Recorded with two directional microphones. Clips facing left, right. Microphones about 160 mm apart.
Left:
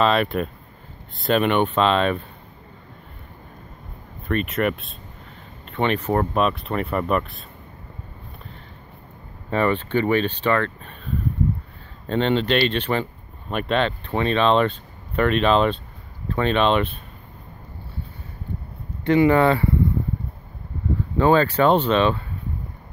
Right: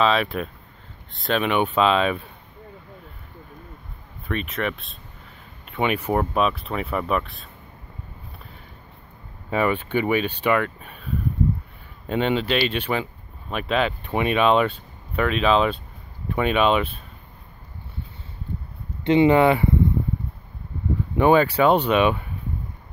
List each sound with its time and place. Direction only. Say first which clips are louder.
0.0 s speech: left 1 dB; centre (ahead or behind)
4.3 s speech: left 4 dB; centre (ahead or behind)
9.5 s speech: left 1 dB; 10° right (ahead or behind)
12.1 s speech: left 2 dB; 10° right (ahead or behind)
19.0 s speech: even; 20° right (ahead or behind)
21.2 s speech: even; 15° right (ahead or behind)